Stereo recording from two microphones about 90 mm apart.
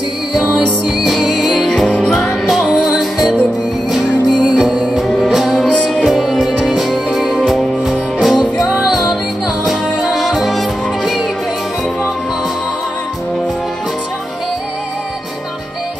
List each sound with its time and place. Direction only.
0.3 s music: 5° right (ahead or behind); by 2.0 s 10° left (ahead or behind)
2.4 s music: centre (ahead or behind)
4.4 s music: 10° right (ahead or behind)